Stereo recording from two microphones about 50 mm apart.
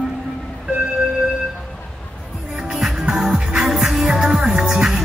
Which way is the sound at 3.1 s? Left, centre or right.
Centre.